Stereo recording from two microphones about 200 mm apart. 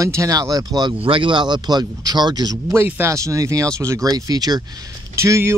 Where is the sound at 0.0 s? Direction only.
15° right (ahead or behind).